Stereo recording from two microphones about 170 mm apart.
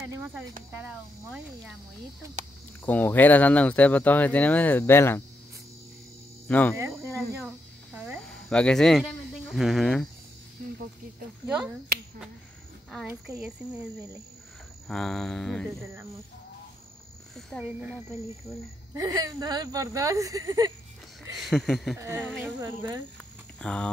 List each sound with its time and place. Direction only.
0.0 s cricket: 10° right (ahead or behind)
2.8 s speech: 10° left (ahead or behind)
6.4 s speech: 5° left (ahead or behind)
7.4 s a sound: centre (ahead or behind)
8.3 s speech: 5° left (ahead or behind)
11.4 s cricket: 5° right (ahead or behind)
14.9 s speech: centre (ahead or behind)
15.8 s cricket: 15° right (ahead or behind)
17.5 s speech: centre (ahead or behind)
18.9 s speech: 20° right (ahead or behind)
21.4 s speech: centre (ahead or behind)
21.9 s cricket: 15° right (ahead or behind)
22.6 s speech: 20° right (ahead or behind)
23.6 s speech: 5° left (ahead or behind)